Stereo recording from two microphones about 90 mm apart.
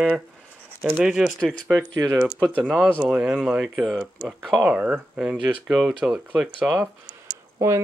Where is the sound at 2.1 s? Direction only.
5° right (ahead or behind).